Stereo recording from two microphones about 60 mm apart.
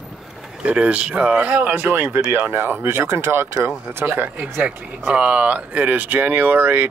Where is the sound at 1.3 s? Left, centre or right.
Right.